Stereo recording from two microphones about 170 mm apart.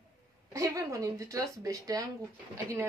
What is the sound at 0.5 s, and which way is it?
Speech, 20° right (ahead or behind).